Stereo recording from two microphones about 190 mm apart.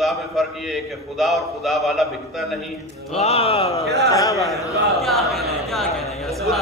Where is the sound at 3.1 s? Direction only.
35° left (ahead or behind).